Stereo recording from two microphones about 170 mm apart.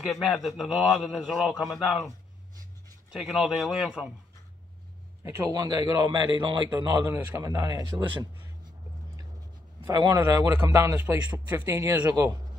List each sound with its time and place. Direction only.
0.1 s a man's voice: centre (ahead or behind)
3.1 s a man's voice: centre (ahead or behind)
5.2 s a man's voice: 20° right (ahead or behind)
9.8 s a man's voice: 25° right (ahead or behind)